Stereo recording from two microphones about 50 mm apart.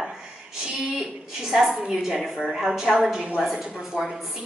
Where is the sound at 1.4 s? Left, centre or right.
Centre.